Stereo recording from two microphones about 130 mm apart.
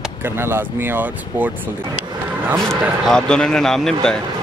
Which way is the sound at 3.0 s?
5° left (ahead or behind).